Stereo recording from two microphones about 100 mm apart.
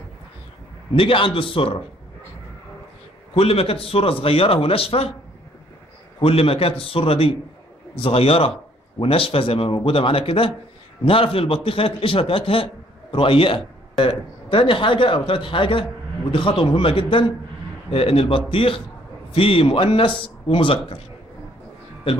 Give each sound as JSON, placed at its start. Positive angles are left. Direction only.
{"t": 0.9, "sound": "speech", "side_deg": 65}
{"t": 3.3, "sound": "a man's voice", "side_deg": 75}
{"t": 6.2, "sound": "a man's voice", "side_deg": 75}
{"t": 22.1, "sound": "a man's voice", "side_deg": 75}